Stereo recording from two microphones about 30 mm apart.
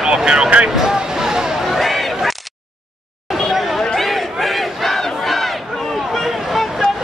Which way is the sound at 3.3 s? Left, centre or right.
Centre.